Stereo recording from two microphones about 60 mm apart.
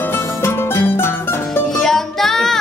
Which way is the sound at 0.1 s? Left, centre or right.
Left.